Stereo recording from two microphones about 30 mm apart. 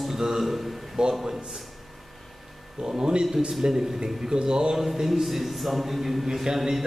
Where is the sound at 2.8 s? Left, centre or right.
Right.